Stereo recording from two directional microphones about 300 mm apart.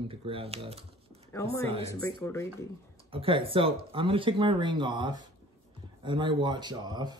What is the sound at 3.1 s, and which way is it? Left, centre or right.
Speech, centre.